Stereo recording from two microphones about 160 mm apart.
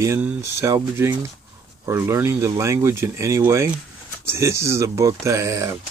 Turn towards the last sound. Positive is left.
turn(degrees=-20)  # may be behind; listen again after turning